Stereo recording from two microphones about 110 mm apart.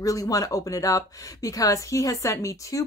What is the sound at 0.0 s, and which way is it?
Speech, 30° left (ahead or behind).